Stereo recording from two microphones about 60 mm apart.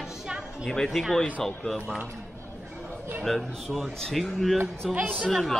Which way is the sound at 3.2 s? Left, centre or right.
Centre.